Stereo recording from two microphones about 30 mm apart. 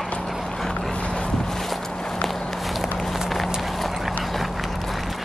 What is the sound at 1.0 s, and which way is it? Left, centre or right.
Boat, left.